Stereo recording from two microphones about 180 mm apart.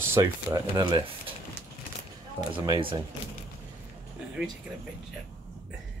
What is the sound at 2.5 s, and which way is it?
Speech, 25° right (ahead or behind).